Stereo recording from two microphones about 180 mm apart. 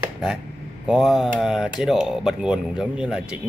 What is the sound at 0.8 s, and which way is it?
Speech, centre (ahead or behind).